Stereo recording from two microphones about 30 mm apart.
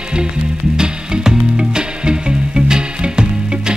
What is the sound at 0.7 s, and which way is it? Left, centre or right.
Music, right.